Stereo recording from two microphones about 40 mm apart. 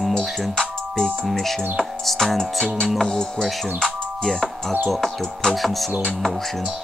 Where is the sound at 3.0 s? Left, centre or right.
Centre.